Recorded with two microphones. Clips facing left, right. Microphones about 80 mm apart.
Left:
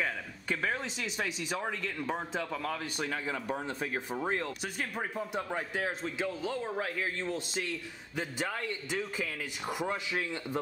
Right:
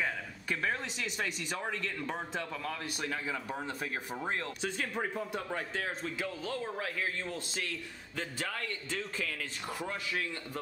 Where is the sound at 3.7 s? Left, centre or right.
Left.